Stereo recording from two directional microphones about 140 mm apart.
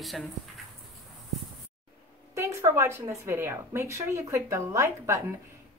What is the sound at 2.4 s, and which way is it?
A woman's voice, 20° right (ahead or behind).